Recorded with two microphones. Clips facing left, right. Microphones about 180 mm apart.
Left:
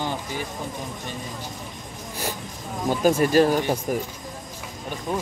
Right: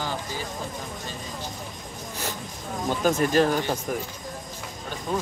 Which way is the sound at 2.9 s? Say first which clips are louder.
Left 3 dB; 10° left (ahead or behind).